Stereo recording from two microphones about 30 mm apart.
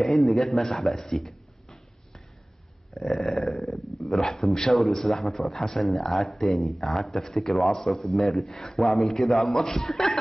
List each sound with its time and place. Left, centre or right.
0.0 s speech: centre
1.1 s a sound: centre
4.0 s a man's voice: centre
8.4 s speech: centre
8.7 s speech: centre